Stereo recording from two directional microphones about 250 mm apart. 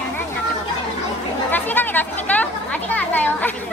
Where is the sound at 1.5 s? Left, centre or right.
Centre.